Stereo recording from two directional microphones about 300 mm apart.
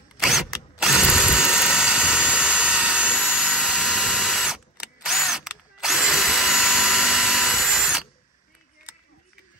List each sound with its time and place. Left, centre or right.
0.2 s drill: centre